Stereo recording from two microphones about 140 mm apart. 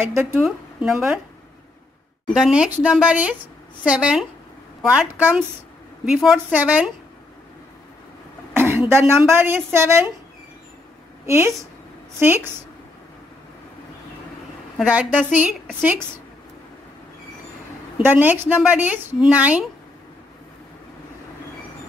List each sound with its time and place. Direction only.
0.0 s speech: 15° right (ahead or behind)
0.4 s a woman's voice: 5° right (ahead or behind)
2.2 s a woman's voice: 5° right (ahead or behind)
8.6 s speech: 15° right (ahead or behind)
11.2 s a woman's voice: 20° right (ahead or behind)
14.8 s speech: 10° right (ahead or behind)
17.9 s speech: 15° right (ahead or behind)